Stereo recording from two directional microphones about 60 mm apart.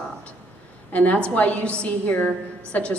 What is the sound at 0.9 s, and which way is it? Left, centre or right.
A woman's voice, left.